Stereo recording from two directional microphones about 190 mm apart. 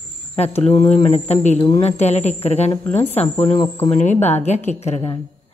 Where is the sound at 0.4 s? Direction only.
35° left (ahead or behind).